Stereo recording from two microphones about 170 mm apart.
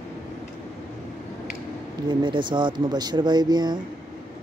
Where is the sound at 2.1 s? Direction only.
30° right (ahead or behind).